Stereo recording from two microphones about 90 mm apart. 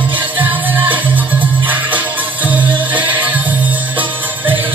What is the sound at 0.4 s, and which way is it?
Music, 20° right (ahead or behind).